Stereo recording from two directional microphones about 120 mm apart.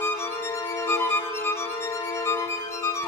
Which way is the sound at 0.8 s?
20° left (ahead or behind).